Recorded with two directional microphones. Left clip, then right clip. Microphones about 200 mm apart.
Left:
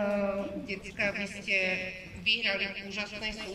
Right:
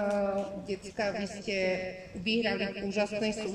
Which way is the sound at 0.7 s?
30° right (ahead or behind).